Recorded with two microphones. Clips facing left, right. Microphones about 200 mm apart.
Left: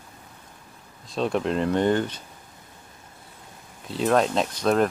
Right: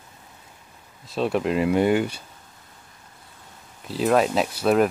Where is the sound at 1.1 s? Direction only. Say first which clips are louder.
Right 1 dB; 5° right (ahead or behind).